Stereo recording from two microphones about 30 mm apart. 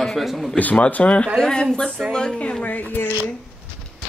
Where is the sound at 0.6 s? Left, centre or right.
Left.